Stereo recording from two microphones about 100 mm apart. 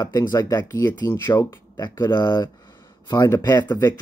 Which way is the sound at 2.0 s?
45° left (ahead or behind).